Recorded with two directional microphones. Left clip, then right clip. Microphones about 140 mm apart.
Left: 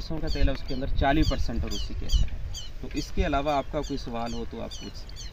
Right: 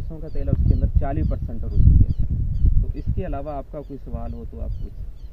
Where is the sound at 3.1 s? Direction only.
5° left (ahead or behind).